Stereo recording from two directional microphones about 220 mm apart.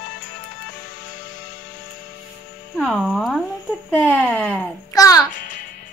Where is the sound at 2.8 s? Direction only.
Centre (ahead or behind).